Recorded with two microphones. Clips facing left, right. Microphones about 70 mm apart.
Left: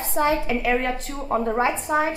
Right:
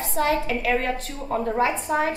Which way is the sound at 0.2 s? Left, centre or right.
Centre.